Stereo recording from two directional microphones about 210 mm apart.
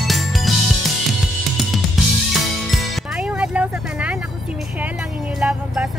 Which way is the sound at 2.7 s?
Centre (ahead or behind).